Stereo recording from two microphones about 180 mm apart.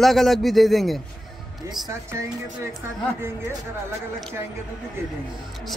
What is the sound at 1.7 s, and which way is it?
Speech, 15° right (ahead or behind).